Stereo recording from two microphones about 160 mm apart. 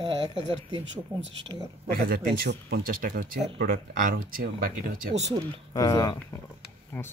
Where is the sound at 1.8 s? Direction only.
70° right (ahead or behind).